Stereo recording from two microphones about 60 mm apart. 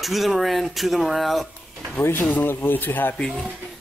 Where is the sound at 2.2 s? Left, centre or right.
Left.